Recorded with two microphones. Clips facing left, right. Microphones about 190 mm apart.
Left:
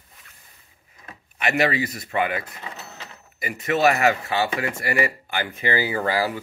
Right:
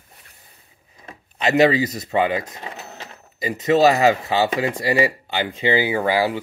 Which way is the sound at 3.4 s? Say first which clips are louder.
Right 5 dB; 25° right (ahead or behind).